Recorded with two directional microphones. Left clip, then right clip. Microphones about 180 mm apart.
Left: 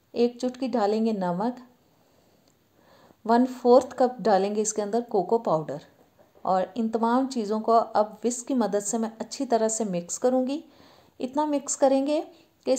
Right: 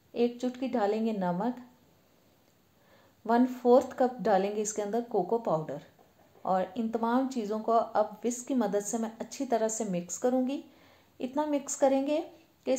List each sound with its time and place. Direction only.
0.1 s speech: 40° left (ahead or behind)
3.3 s speech: 40° left (ahead or behind)